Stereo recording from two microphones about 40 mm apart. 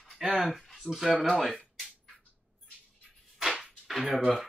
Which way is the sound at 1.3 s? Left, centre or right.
Centre.